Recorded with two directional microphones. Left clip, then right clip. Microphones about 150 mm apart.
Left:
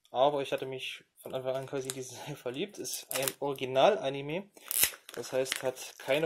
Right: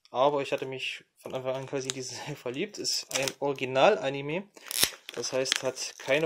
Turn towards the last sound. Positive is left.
turn(degrees=-15)  # may be behind; listen again after turning